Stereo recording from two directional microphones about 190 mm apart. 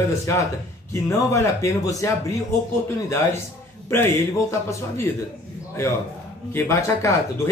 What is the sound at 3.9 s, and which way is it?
Speech, 10° left (ahead or behind).